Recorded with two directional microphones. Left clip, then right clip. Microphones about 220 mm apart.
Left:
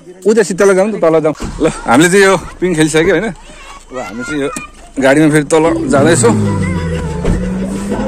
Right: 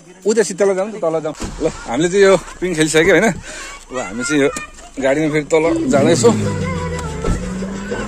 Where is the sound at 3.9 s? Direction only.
50° right (ahead or behind).